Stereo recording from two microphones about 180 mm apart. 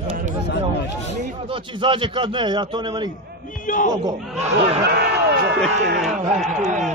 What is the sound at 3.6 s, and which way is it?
Speech, 45° left (ahead or behind).